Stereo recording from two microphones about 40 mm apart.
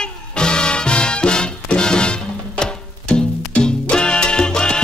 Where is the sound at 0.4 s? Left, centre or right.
Left.